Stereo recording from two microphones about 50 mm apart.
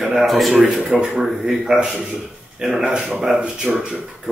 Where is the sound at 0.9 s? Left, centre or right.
Centre.